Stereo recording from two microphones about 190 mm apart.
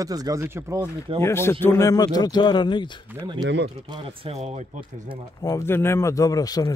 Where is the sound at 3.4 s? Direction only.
65° right (ahead or behind).